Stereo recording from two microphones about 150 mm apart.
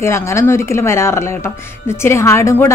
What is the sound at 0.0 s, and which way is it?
A woman's voice, 20° left (ahead or behind).